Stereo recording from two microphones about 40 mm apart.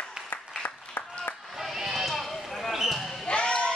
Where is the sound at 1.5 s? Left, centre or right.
Centre.